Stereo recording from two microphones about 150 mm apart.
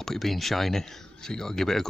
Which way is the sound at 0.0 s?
Centre (ahead or behind).